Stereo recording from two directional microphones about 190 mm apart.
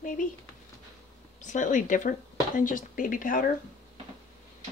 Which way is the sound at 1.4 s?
40° left (ahead or behind).